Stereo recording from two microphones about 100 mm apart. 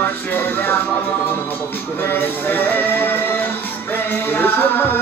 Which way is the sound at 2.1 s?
20° left (ahead or behind).